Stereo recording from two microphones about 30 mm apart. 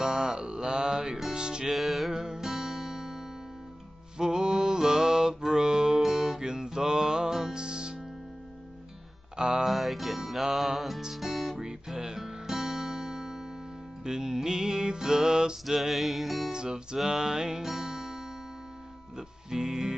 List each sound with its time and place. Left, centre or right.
0.0 s music: right
1.7 s music: centre
2.1 s music: centre
4.2 s mantra: right
5.4 s music: right
6.0 s music: centre
6.4 s music: right
9.4 s music: right
9.7 s music: centre
11.6 s music: right
12.2 s guitar: centre
14.0 s music: right
15.6 s music: centre
16.5 s music: right